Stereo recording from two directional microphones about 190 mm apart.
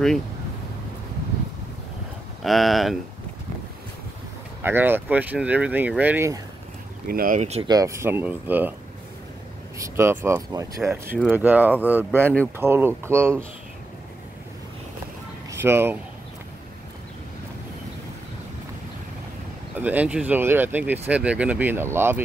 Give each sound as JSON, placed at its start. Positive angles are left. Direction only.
{"t": 2.4, "sound": "speech", "side_deg": 0}
{"t": 4.6, "sound": "speech", "side_deg": -10}
{"t": 7.1, "sound": "speech", "side_deg": -50}
{"t": 7.6, "sound": "speech", "side_deg": -20}
{"t": 9.8, "sound": "speech", "side_deg": -15}
{"t": 15.5, "sound": "speech", "side_deg": -10}
{"t": 19.8, "sound": "speech", "side_deg": -10}